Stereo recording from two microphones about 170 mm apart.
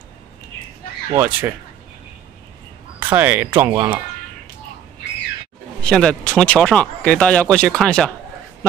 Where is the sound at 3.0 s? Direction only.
10° right (ahead or behind).